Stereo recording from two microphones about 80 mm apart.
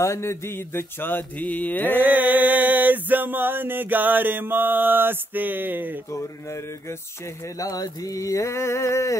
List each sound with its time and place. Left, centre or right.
0.0 s speech: left
1.4 s mantra: centre
2.0 s music: right
7.5 s a sound: left